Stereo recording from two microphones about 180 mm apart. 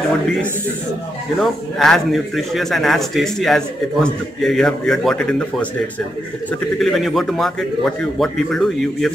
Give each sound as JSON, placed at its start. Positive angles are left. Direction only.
{"t": 1.4, "sound": "a man's voice", "side_deg": 0}
{"t": 6.8, "sound": "a man's voice", "side_deg": 0}